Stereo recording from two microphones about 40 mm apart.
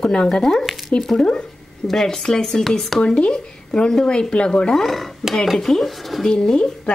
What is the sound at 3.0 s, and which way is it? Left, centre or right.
Speech, left.